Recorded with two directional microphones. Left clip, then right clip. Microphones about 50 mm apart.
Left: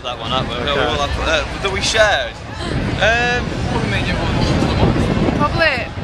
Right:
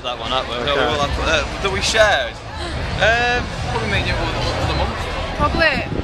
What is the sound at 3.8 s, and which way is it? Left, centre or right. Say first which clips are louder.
Speech: right 2 dB; right.